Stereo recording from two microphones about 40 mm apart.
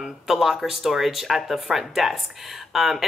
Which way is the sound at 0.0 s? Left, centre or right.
Centre.